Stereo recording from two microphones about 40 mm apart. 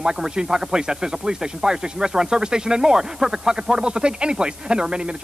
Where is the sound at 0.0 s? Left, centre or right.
Centre.